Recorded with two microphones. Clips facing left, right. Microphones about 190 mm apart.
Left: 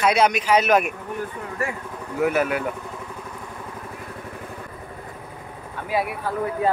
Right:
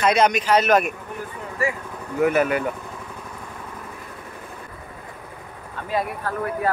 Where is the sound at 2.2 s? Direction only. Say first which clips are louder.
Right 2 dB; 5° left (ahead or behind).